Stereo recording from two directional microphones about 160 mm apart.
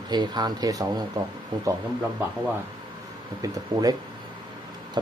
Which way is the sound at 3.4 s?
25° right (ahead or behind).